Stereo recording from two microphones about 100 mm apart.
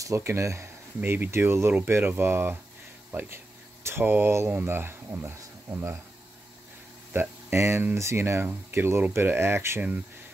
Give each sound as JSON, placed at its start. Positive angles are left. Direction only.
{"t": 0.0, "sound": "speech", "side_deg": -30}
{"t": 7.1, "sound": "speech", "side_deg": -20}